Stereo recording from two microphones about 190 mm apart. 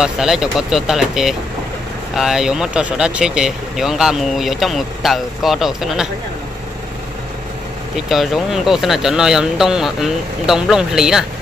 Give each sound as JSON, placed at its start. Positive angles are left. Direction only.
{"t": 0.0, "sound": "speech", "side_deg": -5}
{"t": 8.1, "sound": "speech", "side_deg": 0}